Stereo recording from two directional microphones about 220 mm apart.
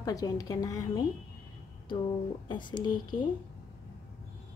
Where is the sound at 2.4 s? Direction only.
20° left (ahead or behind).